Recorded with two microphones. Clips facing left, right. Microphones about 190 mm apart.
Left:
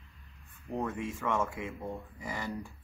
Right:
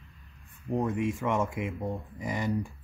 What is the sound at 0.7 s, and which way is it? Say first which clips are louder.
Speech: right 6 dB; 15° right (ahead or behind).